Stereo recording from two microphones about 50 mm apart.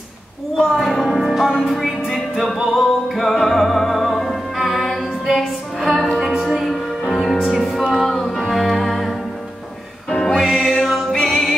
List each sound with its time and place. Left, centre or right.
0.6 s a sound: centre
1.2 s music: centre
5.9 s music: centre
10.0 s music: centre
10.3 s music: centre